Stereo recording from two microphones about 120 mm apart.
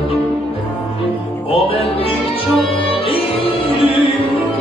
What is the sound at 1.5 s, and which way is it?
Music, 50° left (ahead or behind).